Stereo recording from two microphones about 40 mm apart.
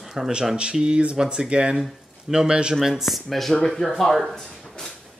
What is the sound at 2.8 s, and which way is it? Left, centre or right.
Speech, centre.